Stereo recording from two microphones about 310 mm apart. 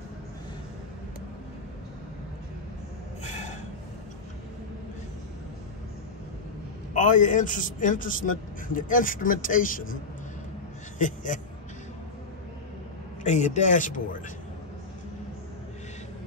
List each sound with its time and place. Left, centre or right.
3.3 s a sound: left
6.9 s speech: left
11.0 s a man's voice: left
13.2 s speech: left